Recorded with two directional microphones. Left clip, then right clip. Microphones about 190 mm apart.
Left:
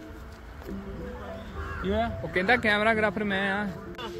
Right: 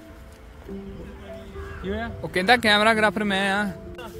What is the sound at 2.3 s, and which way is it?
Speech, 50° right (ahead or behind).